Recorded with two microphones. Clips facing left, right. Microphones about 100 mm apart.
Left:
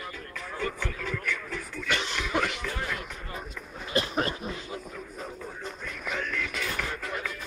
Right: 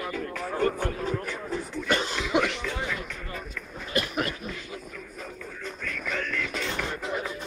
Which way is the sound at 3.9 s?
30° left (ahead or behind).